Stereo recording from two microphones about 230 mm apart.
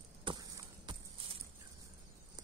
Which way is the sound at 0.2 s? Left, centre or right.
Centre.